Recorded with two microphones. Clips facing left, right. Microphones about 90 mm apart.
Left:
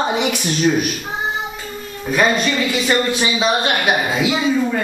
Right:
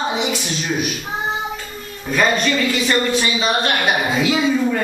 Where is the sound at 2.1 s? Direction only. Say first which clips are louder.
Left 1 dB; 10° left (ahead or behind).